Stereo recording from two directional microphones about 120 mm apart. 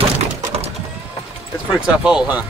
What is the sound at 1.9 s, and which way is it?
Speech, 10° right (ahead or behind).